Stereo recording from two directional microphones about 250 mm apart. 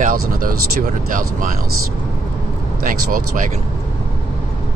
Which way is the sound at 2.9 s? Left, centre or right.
Right.